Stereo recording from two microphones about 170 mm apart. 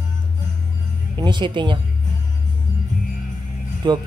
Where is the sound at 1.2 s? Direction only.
25° right (ahead or behind).